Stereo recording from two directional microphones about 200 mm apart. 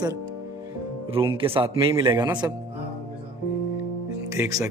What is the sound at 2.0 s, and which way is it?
Speech, 15° right (ahead or behind).